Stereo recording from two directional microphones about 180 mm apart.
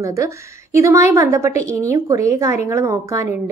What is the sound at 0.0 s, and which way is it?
A woman's voice, 15° right (ahead or behind).